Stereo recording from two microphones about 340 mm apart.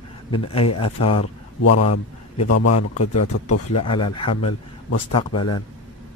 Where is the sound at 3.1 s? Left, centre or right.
Left.